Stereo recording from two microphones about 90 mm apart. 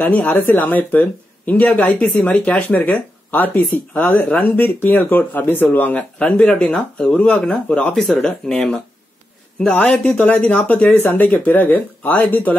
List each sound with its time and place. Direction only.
0.0 s speech: 15° left (ahead or behind)